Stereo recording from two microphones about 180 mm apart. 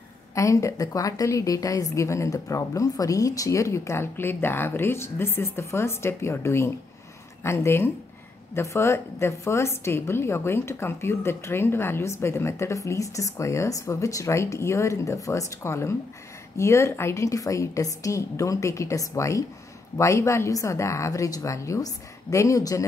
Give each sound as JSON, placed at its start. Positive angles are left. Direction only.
{"t": 0.3, "sound": "a woman's voice", "side_deg": 15}